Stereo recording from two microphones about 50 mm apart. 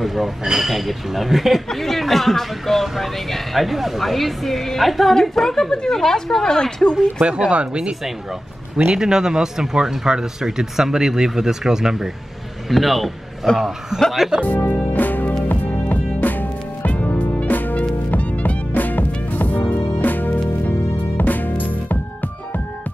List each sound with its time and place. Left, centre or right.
0.0 s a woman's voice: centre
7.2 s a man's voice: centre
14.9 s music: left